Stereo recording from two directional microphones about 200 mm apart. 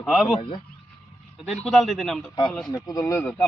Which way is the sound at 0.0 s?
Centre (ahead or behind).